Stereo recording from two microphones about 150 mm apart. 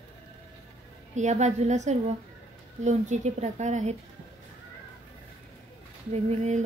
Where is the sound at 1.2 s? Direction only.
50° right (ahead or behind).